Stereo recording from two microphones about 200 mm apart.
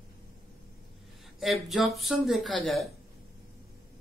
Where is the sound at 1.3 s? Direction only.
Centre (ahead or behind).